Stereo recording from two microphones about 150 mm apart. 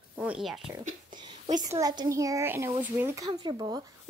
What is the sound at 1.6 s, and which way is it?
A child's voice, 25° right (ahead or behind).